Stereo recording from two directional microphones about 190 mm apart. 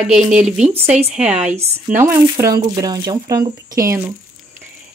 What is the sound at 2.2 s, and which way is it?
Speech, 20° right (ahead or behind).